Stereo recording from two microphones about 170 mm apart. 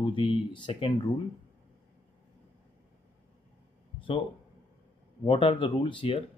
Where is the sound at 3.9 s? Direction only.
30° left (ahead or behind).